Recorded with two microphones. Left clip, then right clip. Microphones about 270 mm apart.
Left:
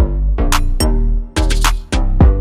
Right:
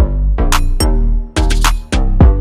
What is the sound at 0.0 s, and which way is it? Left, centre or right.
Music, centre.